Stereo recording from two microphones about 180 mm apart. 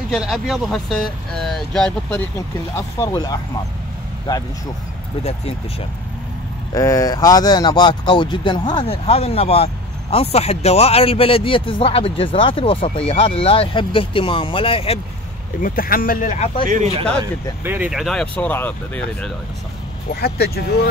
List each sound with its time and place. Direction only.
0.1 s speech: centre (ahead or behind)
2.7 s speech: 15° left (ahead or behind)
6.7 s speech: 20° left (ahead or behind)
15.6 s speech: 55° left (ahead or behind)
16.6 s speech: 40° right (ahead or behind)
17.6 s speech: 10° right (ahead or behind); by 19.3 s 5° left (ahead or behind)
20.2 s speech: 60° left (ahead or behind)